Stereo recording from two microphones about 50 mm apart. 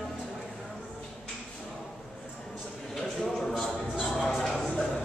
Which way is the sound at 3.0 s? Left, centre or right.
Centre.